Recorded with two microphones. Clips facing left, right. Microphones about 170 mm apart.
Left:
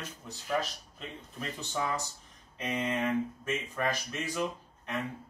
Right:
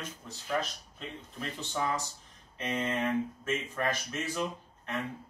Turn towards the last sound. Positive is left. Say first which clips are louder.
# even
turn(degrees=5)  # may be behind; listen again after turning